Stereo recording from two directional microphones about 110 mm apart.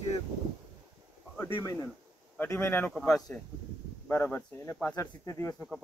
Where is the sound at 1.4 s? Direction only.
25° left (ahead or behind).